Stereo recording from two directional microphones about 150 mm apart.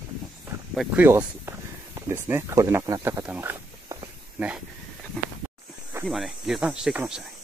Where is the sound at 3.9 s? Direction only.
20° right (ahead or behind).